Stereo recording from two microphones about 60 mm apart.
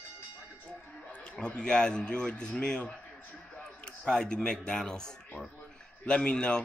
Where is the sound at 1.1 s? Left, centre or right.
Centre.